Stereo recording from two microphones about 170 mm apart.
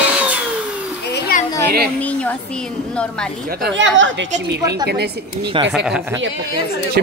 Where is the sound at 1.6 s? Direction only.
65° right (ahead or behind).